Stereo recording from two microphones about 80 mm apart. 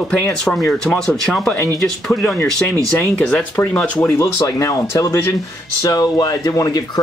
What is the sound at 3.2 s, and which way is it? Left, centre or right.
Speech, centre.